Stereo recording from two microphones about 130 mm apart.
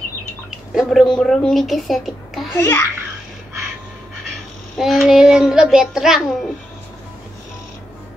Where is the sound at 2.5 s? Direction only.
20° left (ahead or behind).